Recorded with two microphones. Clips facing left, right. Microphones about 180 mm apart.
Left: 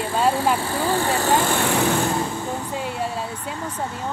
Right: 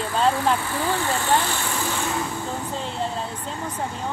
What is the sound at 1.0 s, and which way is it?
Speech, 40° left (ahead or behind).